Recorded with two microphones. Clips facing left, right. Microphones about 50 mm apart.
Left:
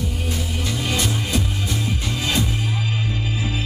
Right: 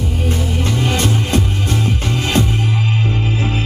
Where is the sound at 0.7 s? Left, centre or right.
Right.